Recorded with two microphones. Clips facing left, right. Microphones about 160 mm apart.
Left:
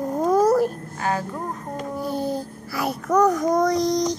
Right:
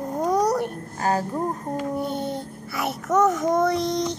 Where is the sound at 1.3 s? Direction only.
25° right (ahead or behind).